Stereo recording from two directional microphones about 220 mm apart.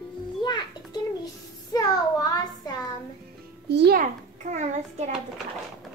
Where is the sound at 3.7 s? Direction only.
45° right (ahead or behind).